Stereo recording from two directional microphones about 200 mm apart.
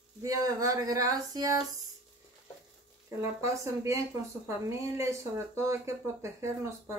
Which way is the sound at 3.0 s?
15° right (ahead or behind).